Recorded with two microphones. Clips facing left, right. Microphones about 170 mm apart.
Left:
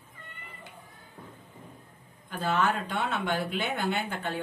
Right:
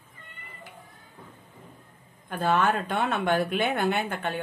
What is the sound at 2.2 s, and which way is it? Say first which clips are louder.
A woman's voice: right 3 dB; 55° right (ahead or behind).